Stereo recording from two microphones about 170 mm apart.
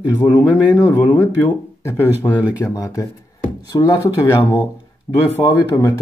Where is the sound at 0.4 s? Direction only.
10° right (ahead or behind).